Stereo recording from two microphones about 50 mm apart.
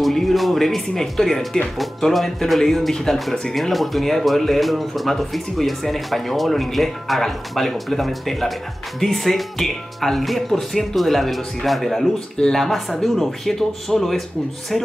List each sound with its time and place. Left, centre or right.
0.0 s speech: centre